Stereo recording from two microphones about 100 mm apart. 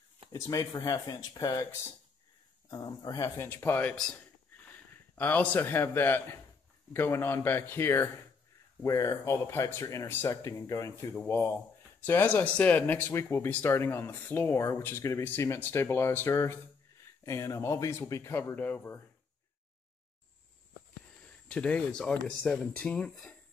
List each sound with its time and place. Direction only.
0.3 s speech: 35° left (ahead or behind)
2.7 s speech: 40° left (ahead or behind)
3.3 s a man's voice: 20° left (ahead or behind)
8.8 s speech: 35° left (ahead or behind)
21.2 s speech: 10° left (ahead or behind)